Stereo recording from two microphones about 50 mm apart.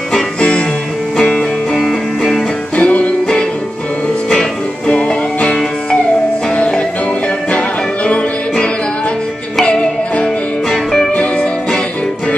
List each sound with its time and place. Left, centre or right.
0.4 s music: centre
1.1 s music: centre
2.7 s music: left
4.8 s music: centre
10.2 s music: centre
11.1 s music: centre